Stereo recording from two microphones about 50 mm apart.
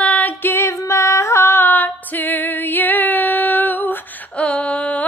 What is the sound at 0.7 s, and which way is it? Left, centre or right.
Female singing, left.